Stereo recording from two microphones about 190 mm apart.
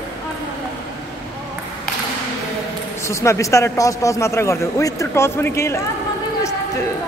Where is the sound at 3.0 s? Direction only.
15° left (ahead or behind).